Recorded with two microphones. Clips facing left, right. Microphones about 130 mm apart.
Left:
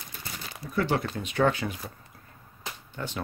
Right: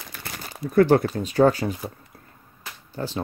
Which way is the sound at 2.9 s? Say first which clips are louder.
Right 7 dB; 35° right (ahead or behind).